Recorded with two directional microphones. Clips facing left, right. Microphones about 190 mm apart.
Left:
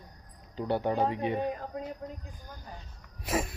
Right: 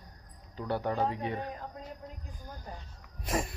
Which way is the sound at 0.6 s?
25° left (ahead or behind).